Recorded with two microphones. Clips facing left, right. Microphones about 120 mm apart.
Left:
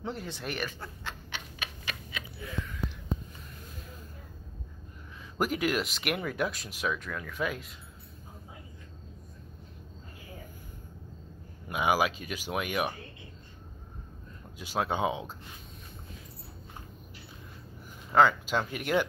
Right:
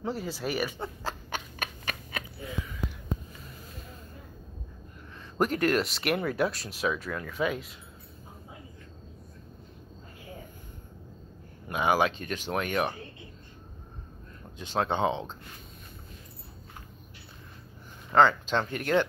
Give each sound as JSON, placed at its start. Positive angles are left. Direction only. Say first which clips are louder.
{"t": 0.0, "sound": "speech", "louder": "right 4 dB", "side_deg": 0}
{"t": 1.0, "sound": "a sound", "louder": "right 6 dB", "side_deg": -45}
{"t": 5.4, "sound": "speech", "louder": "right 3 dB", "side_deg": 5}
{"t": 11.7, "sound": "speech", "louder": "right 2 dB", "side_deg": 10}
{"t": 14.6, "sound": "speech", "louder": "right 2 dB", "side_deg": 10}
{"t": 18.1, "sound": "speech", "louder": "right 1 dB", "side_deg": 5}